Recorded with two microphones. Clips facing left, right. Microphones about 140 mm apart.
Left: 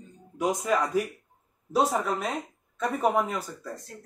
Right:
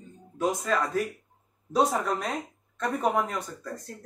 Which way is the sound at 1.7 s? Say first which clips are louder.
Even; 5° left (ahead or behind).